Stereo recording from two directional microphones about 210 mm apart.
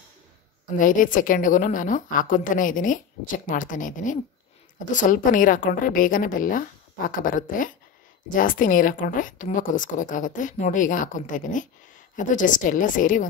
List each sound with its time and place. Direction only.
0.7 s a woman's voice: 40° left (ahead or behind)